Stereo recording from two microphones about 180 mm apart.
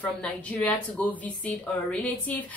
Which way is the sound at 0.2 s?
5° left (ahead or behind).